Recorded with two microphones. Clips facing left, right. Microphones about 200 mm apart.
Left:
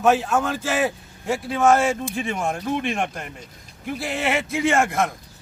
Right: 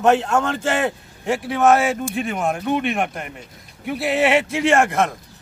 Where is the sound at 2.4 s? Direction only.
65° right (ahead or behind).